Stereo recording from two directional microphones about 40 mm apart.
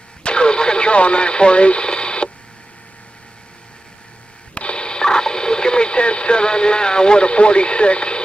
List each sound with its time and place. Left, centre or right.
0.2 s radio: left
4.6 s radio: left